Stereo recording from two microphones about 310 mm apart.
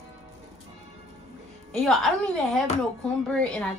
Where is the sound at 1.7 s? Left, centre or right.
Centre.